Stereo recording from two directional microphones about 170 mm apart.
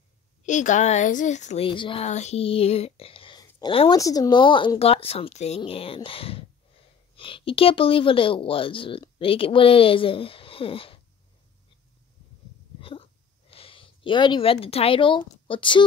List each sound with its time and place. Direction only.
0.5 s speech: 45° left (ahead or behind)
1.7 s speech: 30° left (ahead or behind)
4.0 s speech: 20° left (ahead or behind)
12.8 s a sound: 30° left (ahead or behind)